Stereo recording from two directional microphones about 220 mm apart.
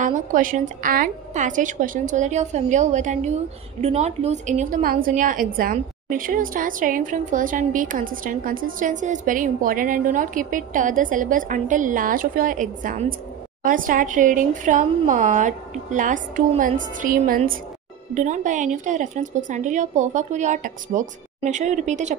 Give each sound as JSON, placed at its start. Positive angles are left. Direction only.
{"t": 0.0, "sound": "a woman's voice", "side_deg": -35}